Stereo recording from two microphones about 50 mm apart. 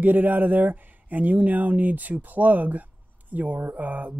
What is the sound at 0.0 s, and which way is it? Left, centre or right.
Speech, right.